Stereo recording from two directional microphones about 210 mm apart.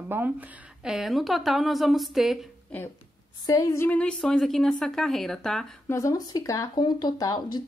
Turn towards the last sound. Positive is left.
turn(degrees=20)  # may be behind; listen again after turning